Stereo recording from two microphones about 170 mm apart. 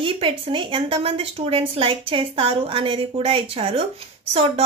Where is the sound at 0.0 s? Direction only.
30° right (ahead or behind).